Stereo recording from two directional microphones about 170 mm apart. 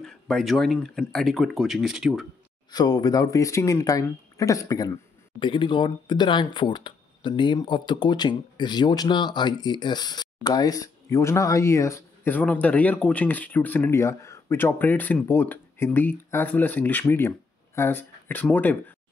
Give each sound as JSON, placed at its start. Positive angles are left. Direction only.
{"t": 0.0, "sound": "speech", "side_deg": 5}
{"t": 2.7, "sound": "speech", "side_deg": 25}